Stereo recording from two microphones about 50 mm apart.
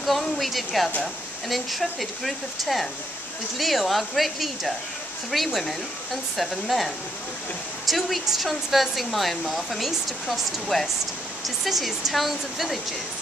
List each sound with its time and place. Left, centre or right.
0.0 s speech: centre